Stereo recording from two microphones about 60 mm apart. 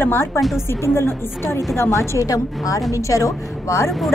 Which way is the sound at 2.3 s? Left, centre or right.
Left.